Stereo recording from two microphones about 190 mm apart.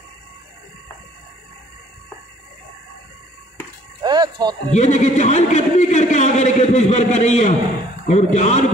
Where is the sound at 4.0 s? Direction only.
20° right (ahead or behind).